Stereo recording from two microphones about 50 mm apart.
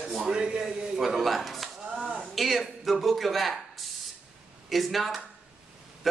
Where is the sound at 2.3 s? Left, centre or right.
Centre.